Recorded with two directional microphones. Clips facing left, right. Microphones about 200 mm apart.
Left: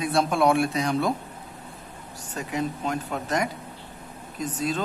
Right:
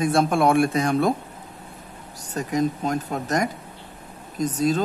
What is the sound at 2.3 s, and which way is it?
Speech, 40° right (ahead or behind).